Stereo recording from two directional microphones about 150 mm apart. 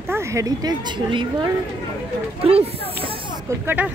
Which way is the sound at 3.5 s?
10° right (ahead or behind).